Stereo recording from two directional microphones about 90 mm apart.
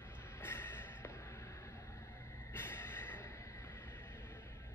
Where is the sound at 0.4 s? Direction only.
25° left (ahead or behind).